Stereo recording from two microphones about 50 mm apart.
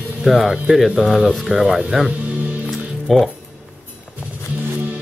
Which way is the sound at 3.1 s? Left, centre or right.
Centre.